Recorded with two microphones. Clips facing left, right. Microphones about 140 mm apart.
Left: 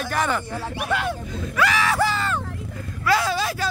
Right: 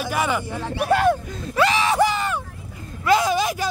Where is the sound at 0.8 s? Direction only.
45° right (ahead or behind).